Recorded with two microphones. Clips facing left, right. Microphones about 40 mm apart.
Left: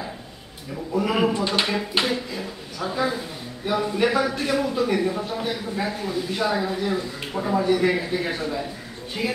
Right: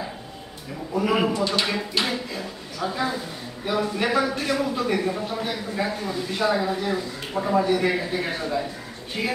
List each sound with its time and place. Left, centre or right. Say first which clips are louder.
0.9 s a man's voice: even; centre